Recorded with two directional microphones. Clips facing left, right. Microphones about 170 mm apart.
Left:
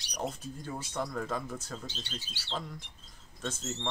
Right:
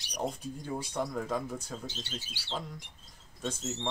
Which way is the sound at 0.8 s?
10° right (ahead or behind).